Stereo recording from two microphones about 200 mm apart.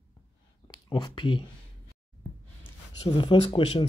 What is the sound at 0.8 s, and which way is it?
Speech, 25° left (ahead or behind).